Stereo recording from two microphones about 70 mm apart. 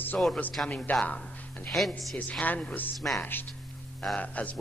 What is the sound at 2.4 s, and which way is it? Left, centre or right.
A man's voice, left.